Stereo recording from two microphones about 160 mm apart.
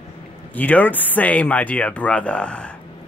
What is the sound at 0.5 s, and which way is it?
Speech, 10° left (ahead or behind).